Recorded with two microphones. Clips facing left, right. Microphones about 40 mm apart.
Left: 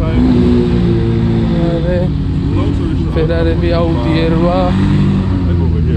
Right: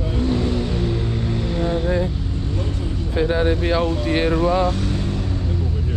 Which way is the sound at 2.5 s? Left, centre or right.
Left.